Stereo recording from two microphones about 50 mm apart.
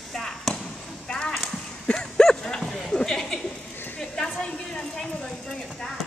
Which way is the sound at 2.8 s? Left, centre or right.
Centre.